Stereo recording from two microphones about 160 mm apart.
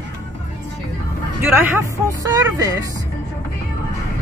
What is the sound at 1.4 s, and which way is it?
Speech, 15° right (ahead or behind).